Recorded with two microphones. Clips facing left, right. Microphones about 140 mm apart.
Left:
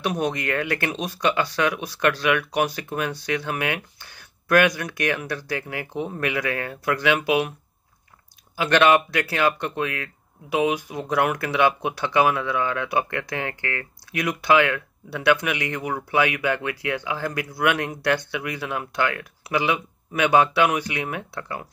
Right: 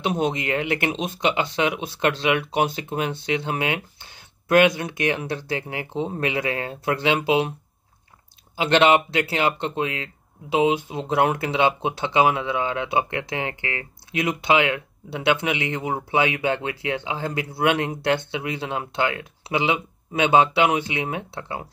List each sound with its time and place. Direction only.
0.0 s speech: 20° right (ahead or behind)
8.5 s speech: 20° right (ahead or behind)